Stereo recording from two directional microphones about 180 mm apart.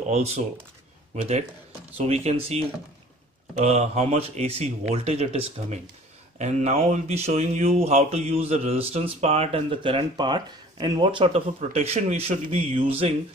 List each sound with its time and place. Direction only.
0.1 s speech: 35° right (ahead or behind)